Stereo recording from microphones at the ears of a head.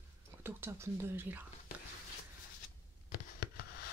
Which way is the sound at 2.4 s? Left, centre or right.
Left.